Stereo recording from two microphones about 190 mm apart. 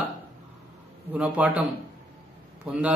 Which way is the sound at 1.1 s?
10° right (ahead or behind).